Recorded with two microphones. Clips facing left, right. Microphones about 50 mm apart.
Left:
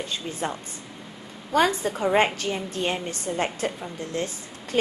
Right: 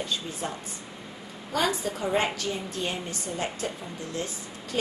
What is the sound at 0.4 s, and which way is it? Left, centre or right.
A woman's voice, left.